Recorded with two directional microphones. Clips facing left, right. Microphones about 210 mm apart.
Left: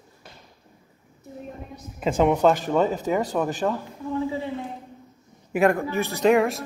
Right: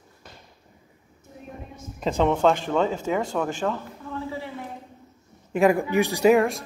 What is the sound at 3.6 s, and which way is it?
Speech, 15° left (ahead or behind).